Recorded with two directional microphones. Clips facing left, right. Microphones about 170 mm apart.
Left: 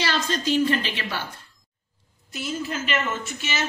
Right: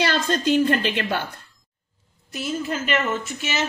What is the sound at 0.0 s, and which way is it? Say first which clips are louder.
A woman's voice: right 4 dB; 55° right (ahead or behind).